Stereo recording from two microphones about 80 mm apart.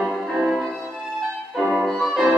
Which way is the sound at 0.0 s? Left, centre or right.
Centre.